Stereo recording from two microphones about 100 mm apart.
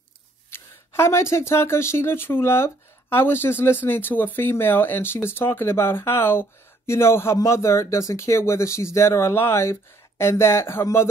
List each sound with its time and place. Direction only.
0.5 s speech: 25° left (ahead or behind)